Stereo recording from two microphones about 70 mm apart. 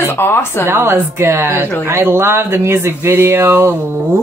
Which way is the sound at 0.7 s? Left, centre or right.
Right.